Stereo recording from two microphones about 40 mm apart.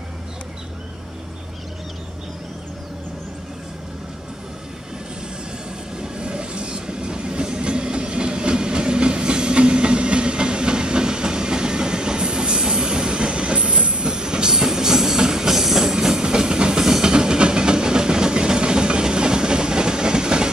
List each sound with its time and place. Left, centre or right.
5.9 s train: right